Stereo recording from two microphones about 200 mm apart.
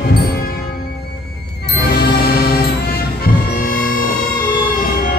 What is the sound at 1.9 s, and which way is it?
Music, 50° left (ahead or behind).